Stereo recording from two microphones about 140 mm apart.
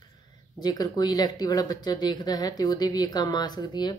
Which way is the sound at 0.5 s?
30° left (ahead or behind).